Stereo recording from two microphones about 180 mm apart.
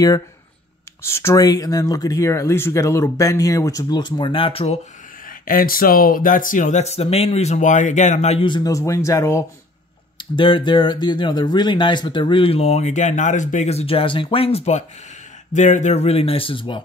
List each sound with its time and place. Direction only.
1.0 s speech: 15° left (ahead or behind); by 4.7 s 30° left (ahead or behind)
5.4 s speech: 55° left (ahead or behind); by 9.4 s 15° left (ahead or behind)
10.1 s speech: 25° left (ahead or behind)